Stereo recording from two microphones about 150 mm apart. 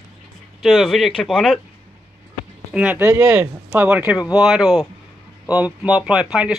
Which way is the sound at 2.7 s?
10° right (ahead or behind).